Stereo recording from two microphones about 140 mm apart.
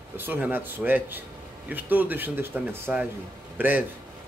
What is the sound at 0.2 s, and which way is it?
A man's voice, 15° right (ahead or behind).